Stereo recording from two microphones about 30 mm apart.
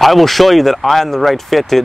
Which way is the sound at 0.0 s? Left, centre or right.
Centre.